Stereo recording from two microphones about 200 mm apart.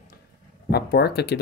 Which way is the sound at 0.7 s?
55° left (ahead or behind).